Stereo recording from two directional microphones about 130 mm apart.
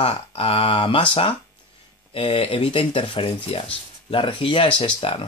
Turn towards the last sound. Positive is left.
turn(degrees=40)  # may be behind; listen again after turning